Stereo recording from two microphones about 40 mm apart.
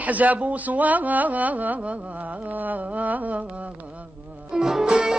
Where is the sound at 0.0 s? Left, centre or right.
Right.